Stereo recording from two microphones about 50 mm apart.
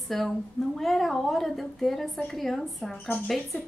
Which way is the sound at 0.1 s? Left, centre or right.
Centre.